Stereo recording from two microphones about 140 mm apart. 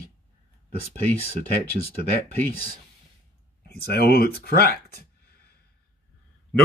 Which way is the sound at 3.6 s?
90° left.